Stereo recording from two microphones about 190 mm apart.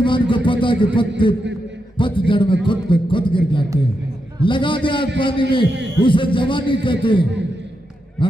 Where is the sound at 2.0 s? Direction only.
25° left (ahead or behind).